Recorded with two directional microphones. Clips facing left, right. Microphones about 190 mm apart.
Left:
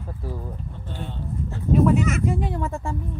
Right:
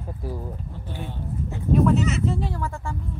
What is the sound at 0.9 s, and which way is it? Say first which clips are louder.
Speech: even; 10° right (ahead or behind).